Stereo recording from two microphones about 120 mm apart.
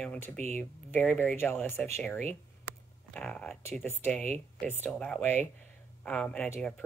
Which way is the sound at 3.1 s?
10° left (ahead or behind).